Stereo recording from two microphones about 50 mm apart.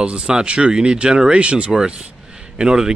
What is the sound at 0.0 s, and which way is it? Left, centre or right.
Speech, right.